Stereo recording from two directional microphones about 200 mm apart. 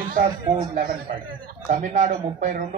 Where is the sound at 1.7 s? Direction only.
40° right (ahead or behind).